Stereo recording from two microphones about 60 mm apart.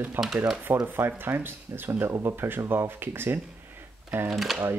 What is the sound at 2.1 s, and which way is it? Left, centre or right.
Speech, right.